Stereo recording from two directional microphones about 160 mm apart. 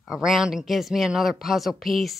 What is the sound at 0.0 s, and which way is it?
Speech, 5° right (ahead or behind).